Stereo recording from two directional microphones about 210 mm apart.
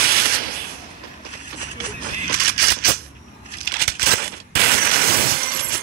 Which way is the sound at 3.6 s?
45° right (ahead or behind).